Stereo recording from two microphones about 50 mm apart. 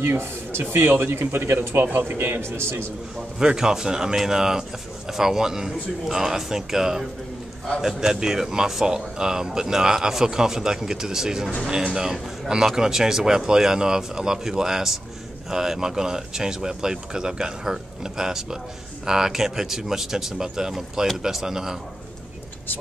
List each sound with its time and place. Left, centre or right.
0.0 s speech: right
3.3 s speech: centre